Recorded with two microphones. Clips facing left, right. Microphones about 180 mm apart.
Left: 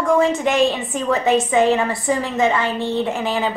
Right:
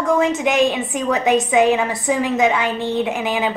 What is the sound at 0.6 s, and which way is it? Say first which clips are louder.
Speech: even; centre (ahead or behind).